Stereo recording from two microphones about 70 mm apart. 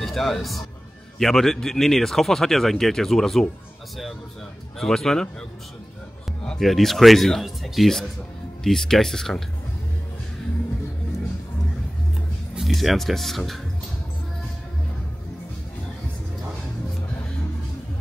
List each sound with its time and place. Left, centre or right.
0.0 s a man's voice: centre
4.7 s speech: centre
6.4 s speech: centre
12.5 s speech: centre